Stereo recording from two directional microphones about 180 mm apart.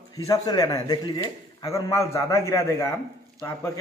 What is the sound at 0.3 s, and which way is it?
A man's voice, 20° left (ahead or behind).